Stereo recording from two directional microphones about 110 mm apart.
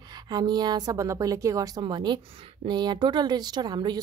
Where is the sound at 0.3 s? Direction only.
40° right (ahead or behind).